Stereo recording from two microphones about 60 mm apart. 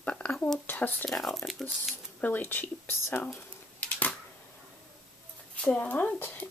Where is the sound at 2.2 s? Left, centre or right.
Left.